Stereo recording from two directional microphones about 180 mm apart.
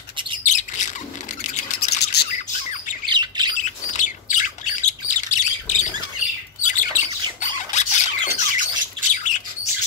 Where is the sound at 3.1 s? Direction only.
25° right (ahead or behind).